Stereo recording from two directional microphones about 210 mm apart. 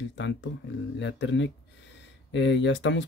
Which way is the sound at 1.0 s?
60° left (ahead or behind).